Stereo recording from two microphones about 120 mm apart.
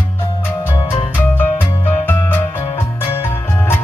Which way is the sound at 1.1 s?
15° left (ahead or behind).